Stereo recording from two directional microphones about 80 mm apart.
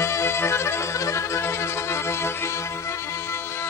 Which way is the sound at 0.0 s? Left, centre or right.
Left.